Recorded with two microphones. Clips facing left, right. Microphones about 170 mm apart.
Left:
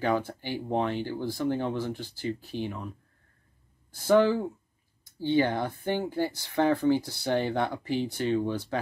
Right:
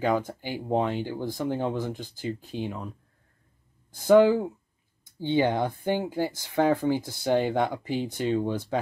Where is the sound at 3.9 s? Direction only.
15° right (ahead or behind).